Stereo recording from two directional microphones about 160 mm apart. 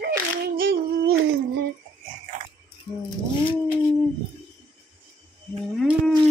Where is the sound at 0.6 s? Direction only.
65° right (ahead or behind).